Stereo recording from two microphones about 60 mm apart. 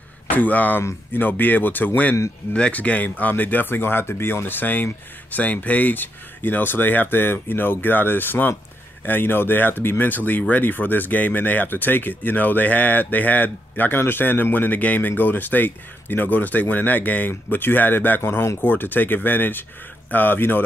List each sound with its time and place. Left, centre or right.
0.3 s speech: left
2.5 s speech: left